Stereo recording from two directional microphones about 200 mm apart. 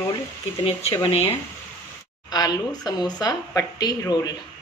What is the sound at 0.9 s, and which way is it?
Speech, 25° left (ahead or behind).